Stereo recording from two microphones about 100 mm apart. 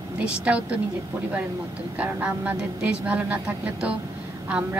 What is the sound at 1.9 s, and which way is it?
Speech, 15° right (ahead or behind).